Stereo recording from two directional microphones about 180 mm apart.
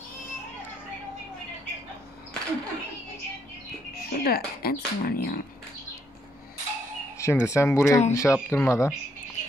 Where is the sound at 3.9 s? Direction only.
60° left (ahead or behind).